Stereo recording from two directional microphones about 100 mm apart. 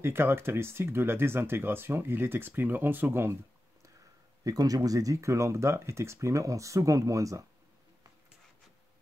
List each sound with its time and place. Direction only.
0.0 s speech: 25° right (ahead or behind)
4.5 s speech: 40° right (ahead or behind)